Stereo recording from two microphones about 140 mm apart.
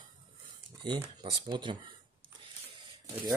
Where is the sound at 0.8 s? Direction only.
35° right (ahead or behind).